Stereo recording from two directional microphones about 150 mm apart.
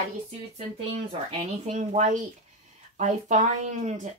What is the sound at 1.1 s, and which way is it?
Speech, 45° right (ahead or behind).